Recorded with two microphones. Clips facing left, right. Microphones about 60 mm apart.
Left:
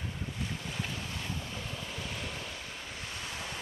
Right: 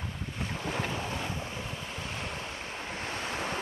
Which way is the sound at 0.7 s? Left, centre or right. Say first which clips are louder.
Right 6 dB; right.